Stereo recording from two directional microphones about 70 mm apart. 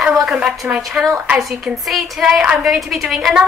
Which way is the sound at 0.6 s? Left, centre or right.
Centre.